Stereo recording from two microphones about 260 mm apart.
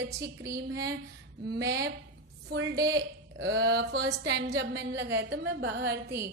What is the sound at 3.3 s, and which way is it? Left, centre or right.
A woman's voice, right.